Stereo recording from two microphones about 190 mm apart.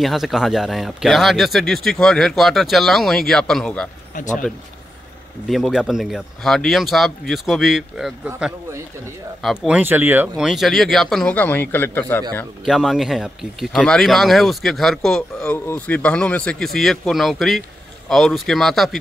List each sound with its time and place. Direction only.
0.0 s speech: centre (ahead or behind)
4.1 s speech: 40° left (ahead or behind)
5.5 s speech: centre (ahead or behind)
12.6 s speech: centre (ahead or behind)